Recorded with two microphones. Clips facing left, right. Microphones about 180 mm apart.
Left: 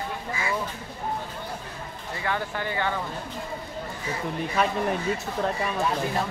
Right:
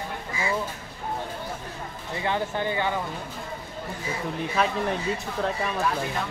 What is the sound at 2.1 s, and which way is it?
Speech, 20° right (ahead or behind).